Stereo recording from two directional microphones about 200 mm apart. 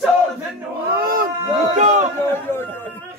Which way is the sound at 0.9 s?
45° right (ahead or behind).